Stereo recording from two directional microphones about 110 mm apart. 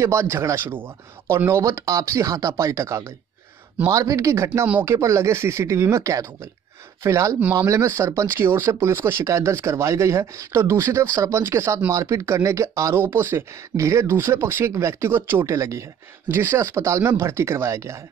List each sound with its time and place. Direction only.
0.0 s speech: 25° right (ahead or behind)